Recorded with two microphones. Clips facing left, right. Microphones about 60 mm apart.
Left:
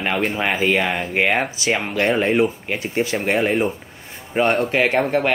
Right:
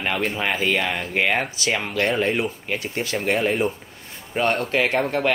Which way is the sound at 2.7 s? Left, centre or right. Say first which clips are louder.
Left 4 dB; left.